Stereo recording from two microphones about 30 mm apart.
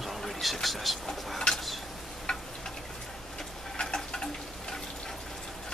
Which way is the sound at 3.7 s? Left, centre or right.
Left.